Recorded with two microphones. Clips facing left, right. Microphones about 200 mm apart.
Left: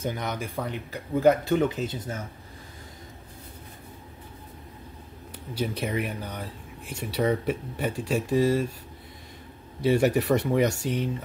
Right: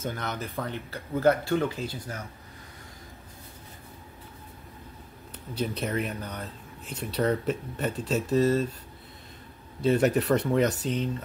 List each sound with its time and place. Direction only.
0.0 s speech: 15° left (ahead or behind)
5.5 s speech: 10° left (ahead or behind)
9.8 s speech: 10° left (ahead or behind)